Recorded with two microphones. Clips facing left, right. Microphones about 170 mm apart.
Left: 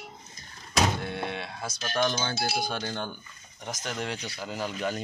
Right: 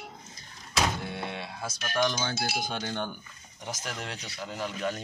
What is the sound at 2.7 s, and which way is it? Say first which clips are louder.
Speech: even; 15° right (ahead or behind).